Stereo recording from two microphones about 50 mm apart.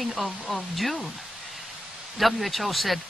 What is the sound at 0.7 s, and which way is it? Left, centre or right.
Speech, centre.